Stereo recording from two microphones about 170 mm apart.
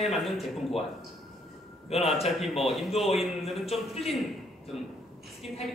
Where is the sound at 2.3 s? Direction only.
Centre (ahead or behind).